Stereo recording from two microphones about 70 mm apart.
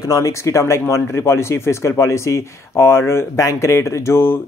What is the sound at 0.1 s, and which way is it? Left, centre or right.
Speech, left.